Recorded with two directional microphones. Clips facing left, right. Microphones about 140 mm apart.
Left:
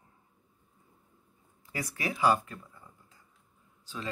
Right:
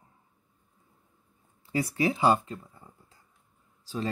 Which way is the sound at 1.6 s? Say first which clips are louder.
Right 8 dB; 30° right (ahead or behind).